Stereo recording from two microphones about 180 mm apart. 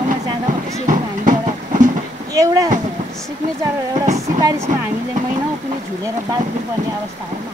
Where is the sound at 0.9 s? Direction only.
45° right (ahead or behind).